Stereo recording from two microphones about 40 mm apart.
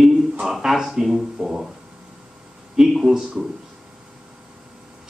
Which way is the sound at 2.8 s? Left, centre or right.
Centre.